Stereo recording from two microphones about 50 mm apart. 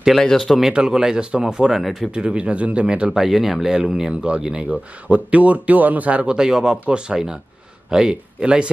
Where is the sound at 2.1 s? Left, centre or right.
Right.